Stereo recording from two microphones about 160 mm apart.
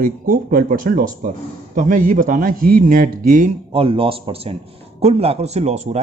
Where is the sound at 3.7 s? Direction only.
35° right (ahead or behind).